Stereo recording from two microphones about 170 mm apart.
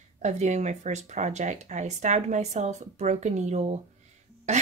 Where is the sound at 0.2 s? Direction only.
40° right (ahead or behind).